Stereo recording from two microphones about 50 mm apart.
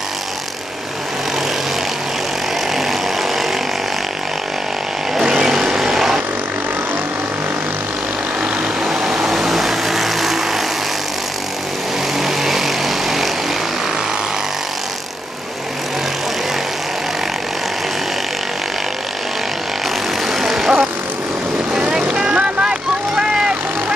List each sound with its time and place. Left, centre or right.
2.7 s vehicle: centre
5.1 s vehicle: centre
8.8 s vehicle: centre
12.2 s vehicle: centre
20.2 s vehicle: centre
21.7 s vehicle: centre